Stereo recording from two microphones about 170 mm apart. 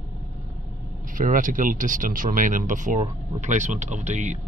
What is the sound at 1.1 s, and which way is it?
Speech, 50° right (ahead or behind).